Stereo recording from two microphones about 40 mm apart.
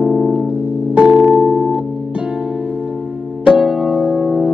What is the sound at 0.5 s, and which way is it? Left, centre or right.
Music, right.